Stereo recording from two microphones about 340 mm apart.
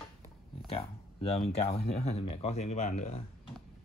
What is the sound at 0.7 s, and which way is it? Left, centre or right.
Speech, centre.